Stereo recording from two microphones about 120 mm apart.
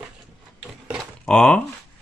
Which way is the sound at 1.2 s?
5° left (ahead or behind).